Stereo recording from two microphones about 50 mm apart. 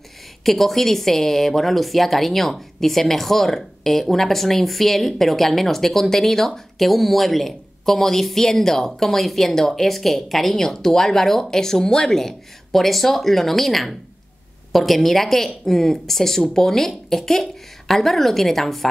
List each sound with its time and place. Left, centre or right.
0.4 s a woman's voice: centre